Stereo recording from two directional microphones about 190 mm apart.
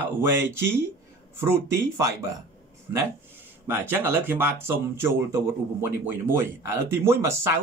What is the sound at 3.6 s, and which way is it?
Speech, 10° right (ahead or behind).